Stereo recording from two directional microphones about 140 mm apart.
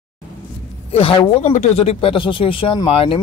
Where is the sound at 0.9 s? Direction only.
40° left (ahead or behind).